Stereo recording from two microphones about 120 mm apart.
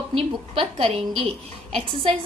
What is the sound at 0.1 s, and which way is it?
A woman's voice, 50° right (ahead or behind).